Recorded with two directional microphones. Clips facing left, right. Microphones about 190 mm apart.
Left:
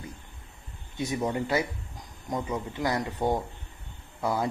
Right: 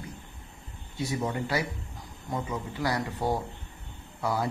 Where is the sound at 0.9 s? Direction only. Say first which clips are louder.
Left 2 dB; 20° left (ahead or behind).